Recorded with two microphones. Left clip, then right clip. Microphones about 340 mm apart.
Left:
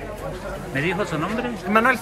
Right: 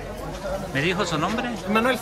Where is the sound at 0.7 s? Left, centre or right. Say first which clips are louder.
Left 1 dB; centre.